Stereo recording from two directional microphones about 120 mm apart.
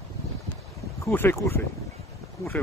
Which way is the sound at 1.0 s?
20° left (ahead or behind).